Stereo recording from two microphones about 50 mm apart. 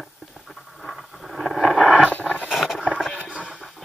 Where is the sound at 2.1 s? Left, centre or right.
Left.